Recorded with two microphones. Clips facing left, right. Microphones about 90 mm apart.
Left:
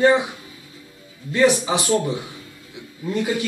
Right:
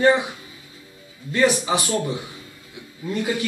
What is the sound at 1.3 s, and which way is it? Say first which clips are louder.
A man's voice: left 2 dB; 15° left (ahead or behind).